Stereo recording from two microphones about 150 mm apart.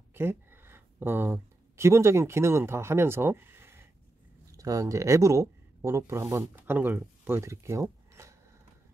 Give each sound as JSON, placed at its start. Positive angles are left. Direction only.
{"t": 0.1, "sound": "speech", "side_deg": -15}